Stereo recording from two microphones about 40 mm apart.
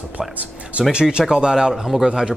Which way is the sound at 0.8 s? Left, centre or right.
Right.